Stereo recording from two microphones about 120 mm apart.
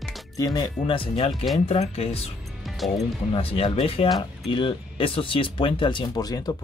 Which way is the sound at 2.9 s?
50° left (ahead or behind).